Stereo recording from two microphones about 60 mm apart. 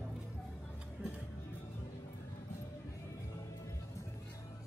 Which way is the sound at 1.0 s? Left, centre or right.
Right.